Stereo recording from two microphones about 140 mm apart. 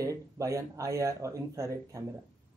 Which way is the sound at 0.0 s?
20° right (ahead or behind).